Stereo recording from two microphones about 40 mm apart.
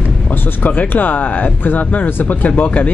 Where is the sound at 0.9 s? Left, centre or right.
Left.